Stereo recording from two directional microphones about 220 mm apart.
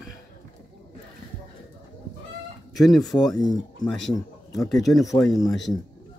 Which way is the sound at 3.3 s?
20° left (ahead or behind).